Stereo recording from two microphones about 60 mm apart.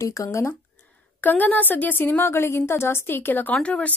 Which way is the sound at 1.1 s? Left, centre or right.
Left.